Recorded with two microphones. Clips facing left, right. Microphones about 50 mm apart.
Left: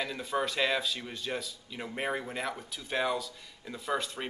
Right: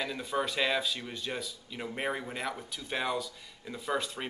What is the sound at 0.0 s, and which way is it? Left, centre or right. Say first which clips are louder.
Speech: even; centre.